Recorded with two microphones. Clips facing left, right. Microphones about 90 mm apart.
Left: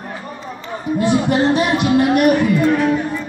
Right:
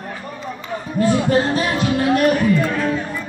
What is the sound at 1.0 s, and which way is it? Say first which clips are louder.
Speech: left 1 dB; 15° left (ahead or behind).